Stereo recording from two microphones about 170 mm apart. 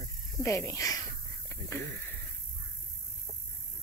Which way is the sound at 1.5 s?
15° left (ahead or behind).